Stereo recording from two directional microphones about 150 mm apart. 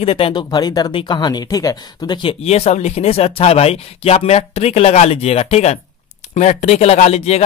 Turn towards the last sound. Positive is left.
turn(degrees=45)  # may be behind; listen again after turning